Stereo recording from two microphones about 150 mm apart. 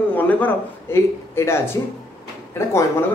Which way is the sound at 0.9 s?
15° left (ahead or behind).